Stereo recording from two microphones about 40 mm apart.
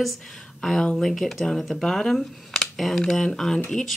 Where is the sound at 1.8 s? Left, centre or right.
Centre.